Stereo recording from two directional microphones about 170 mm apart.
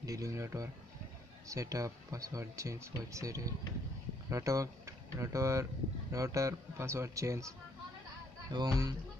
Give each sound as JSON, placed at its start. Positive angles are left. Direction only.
{"t": 0.0, "sound": "a man's voice", "side_deg": -20}